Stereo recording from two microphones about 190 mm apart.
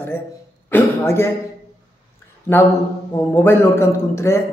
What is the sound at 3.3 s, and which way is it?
Speech, 10° left (ahead or behind).